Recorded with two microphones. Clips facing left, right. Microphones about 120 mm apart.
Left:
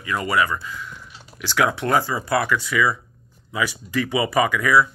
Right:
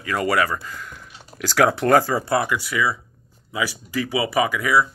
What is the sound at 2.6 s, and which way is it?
Speech, 10° right (ahead or behind).